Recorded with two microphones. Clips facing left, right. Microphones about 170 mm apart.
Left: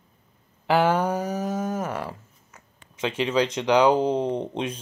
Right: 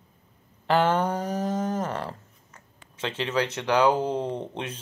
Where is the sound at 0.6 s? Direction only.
10° left (ahead or behind).